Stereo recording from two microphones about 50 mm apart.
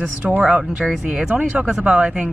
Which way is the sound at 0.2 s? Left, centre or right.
Right.